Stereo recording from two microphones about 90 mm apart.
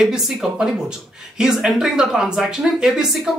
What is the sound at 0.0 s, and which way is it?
Speech, 5° right (ahead or behind).